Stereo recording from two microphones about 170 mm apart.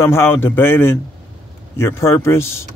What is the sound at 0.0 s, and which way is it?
Speech, 15° left (ahead or behind).